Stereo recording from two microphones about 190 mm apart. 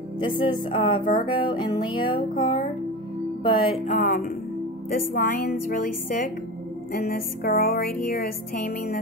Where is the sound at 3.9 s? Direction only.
45° left (ahead or behind).